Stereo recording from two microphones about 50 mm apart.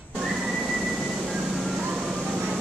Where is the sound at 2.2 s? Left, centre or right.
Right.